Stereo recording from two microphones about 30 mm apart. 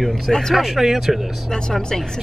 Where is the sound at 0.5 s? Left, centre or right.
Centre.